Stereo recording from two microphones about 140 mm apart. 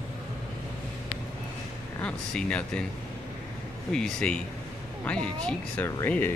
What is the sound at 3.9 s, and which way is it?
Speech, 5° left (ahead or behind).